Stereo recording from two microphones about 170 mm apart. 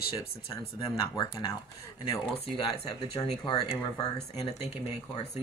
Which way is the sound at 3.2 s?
25° left (ahead or behind).